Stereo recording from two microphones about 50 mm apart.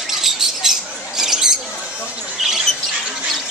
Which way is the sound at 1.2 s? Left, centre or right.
Centre.